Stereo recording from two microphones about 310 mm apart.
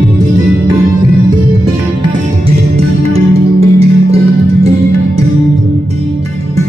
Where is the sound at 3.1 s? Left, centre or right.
Centre.